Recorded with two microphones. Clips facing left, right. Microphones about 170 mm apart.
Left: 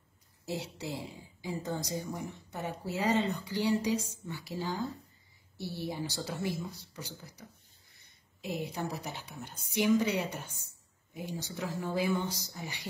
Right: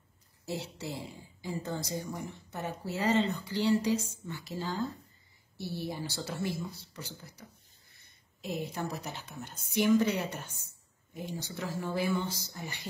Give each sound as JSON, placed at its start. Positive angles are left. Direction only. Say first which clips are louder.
{"t": 0.5, "sound": "speech", "louder": "even", "side_deg": 15}